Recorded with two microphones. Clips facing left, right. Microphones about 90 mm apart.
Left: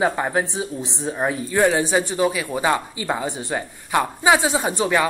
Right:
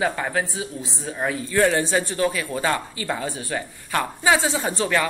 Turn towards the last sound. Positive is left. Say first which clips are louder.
# left 3 dB
turn(degrees=15)  # may be behind; listen again after turning